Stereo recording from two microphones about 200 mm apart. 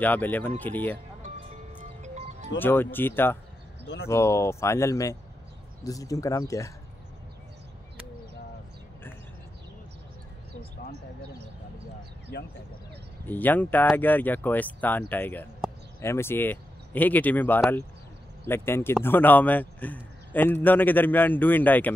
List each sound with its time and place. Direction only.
0.0 s a man's voice: 10° left (ahead or behind)
1.8 s music: 35° right (ahead or behind)
2.6 s a man's voice: 10° left (ahead or behind)
3.8 s speech: 60° left (ahead or behind)
4.1 s a man's voice: 15° left (ahead or behind)
12.3 s speech: 55° left (ahead or behind)
13.3 s a man's voice: 10° left (ahead or behind)